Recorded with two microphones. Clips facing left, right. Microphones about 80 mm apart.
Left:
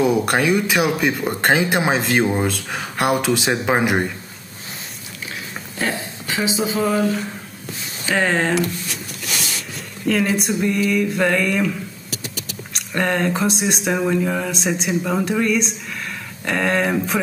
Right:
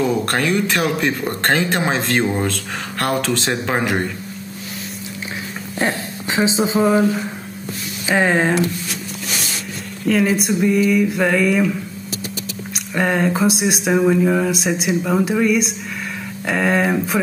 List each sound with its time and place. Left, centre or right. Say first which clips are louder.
0.0 s speech: left 1 dB; centre
5.8 s speech: right 3 dB; right
8.1 s speech: right 3 dB; centre
10.0 s speech: right 2 dB; centre
12.7 s speech: right 2 dB; centre